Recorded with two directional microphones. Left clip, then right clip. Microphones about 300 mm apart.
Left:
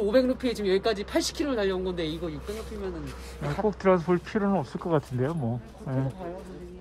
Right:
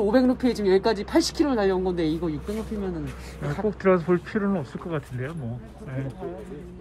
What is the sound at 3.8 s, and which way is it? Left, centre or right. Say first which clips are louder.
Speech: right 3 dB; centre.